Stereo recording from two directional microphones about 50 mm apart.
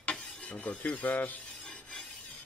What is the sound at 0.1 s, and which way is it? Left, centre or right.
Filing, centre.